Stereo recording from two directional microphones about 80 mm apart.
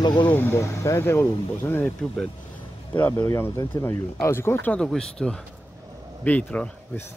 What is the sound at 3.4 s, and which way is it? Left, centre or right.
Speech, left.